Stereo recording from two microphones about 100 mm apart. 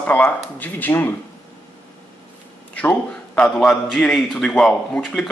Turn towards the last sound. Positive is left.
turn(degrees=5)  # may be behind; listen again after turning